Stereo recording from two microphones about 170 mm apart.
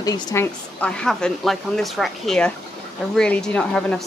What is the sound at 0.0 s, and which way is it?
Speech, 20° left (ahead or behind).